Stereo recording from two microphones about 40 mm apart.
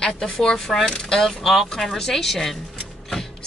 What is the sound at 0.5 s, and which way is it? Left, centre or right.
Speech, centre.